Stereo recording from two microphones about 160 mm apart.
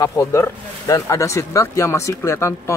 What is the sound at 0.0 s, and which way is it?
Speech, 20° left (ahead or behind).